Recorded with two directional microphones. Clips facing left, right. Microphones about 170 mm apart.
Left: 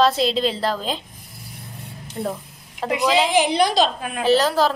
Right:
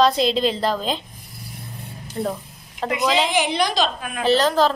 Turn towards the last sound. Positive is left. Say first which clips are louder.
# even
turn(degrees=10)  # may be behind; listen again after turning